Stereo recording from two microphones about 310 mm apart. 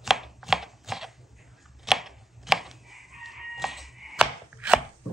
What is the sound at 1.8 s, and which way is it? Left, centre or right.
Crowing, centre.